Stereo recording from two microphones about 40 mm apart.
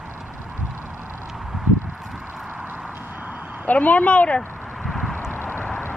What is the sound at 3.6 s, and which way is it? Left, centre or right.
Speech, left.